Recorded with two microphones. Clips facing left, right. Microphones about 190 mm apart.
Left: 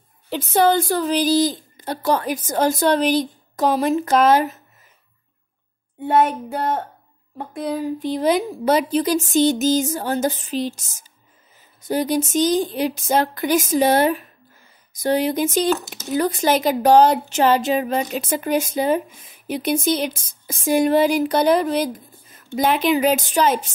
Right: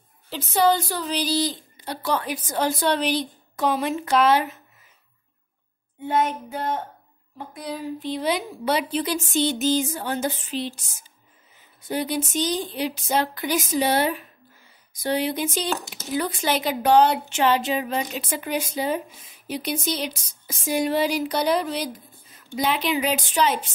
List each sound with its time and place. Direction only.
0.3 s speech: 55° left (ahead or behind)
5.9 s a sound: 55° left (ahead or behind)
7.3 s speech: 50° left (ahead or behind)